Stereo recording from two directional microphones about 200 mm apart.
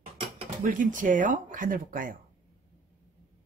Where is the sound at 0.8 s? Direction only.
40° right (ahead or behind).